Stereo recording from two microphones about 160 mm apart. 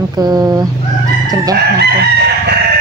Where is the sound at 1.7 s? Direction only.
90° right.